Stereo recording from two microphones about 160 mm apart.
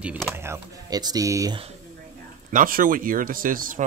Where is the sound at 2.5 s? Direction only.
60° right (ahead or behind).